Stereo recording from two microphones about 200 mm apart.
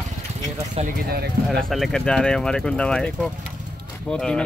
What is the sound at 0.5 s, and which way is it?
Speech, 30° right (ahead or behind).